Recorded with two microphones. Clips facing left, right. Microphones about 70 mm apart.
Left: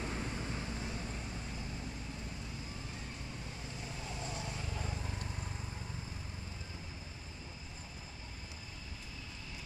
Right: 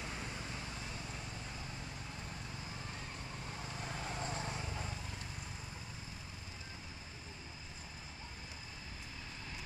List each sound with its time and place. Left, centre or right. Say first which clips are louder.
3.8 s vehicle: right 2 dB; right